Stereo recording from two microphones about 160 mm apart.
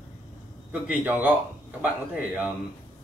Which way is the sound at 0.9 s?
10° right (ahead or behind).